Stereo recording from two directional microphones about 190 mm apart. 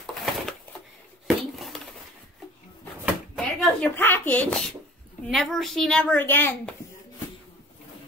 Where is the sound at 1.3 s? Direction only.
Centre (ahead or behind).